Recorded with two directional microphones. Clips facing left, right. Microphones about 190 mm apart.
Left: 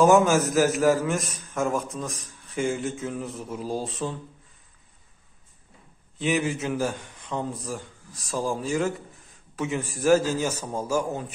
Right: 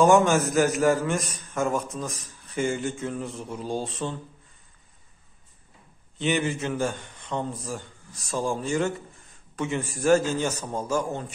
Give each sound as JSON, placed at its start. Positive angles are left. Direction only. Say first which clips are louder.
{"t": 0.0, "sound": "a man's voice", "louder": "left 1 dB", "side_deg": 0}
{"t": 6.1, "sound": "a man's voice", "louder": "even", "side_deg": 0}